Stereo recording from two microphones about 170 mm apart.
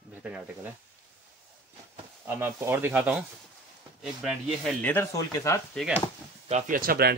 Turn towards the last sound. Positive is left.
turn(degrees=-65)  # may be behind; listen again after turning